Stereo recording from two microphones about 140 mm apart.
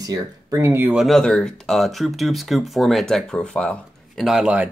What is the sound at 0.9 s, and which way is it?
Speech, centre (ahead or behind).